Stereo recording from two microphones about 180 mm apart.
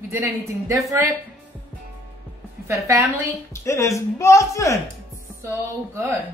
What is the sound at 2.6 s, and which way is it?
Speech, 15° right (ahead or behind).